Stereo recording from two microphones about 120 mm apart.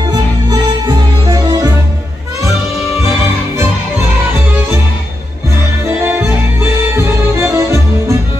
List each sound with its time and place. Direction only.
0.1 s music: 40° right (ahead or behind)
1.3 s music: 30° right (ahead or behind)
5.9 s music: 15° right (ahead or behind)